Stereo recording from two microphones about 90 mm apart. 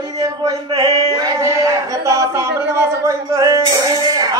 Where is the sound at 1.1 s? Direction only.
40° right (ahead or behind).